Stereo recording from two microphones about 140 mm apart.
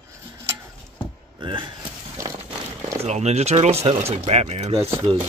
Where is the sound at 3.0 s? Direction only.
50° right (ahead or behind).